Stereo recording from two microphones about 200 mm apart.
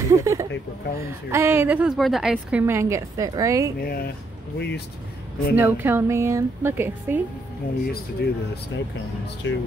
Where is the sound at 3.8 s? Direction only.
50° left (ahead or behind).